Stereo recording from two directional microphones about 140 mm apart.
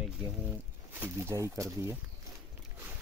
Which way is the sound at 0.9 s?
15° right (ahead or behind).